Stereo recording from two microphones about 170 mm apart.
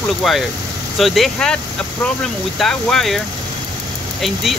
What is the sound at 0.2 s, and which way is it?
Speech, centre (ahead or behind).